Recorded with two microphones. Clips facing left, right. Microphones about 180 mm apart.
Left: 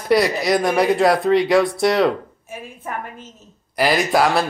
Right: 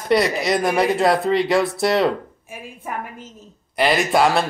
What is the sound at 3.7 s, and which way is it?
Speech, centre (ahead or behind).